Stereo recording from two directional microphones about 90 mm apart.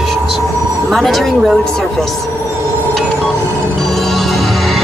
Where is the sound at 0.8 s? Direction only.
Centre (ahead or behind).